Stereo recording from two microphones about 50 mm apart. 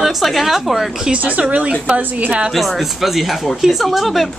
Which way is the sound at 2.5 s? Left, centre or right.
Centre.